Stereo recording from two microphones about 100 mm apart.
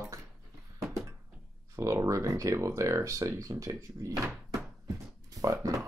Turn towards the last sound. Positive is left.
turn(degrees=-35)  # may be behind; listen again after turning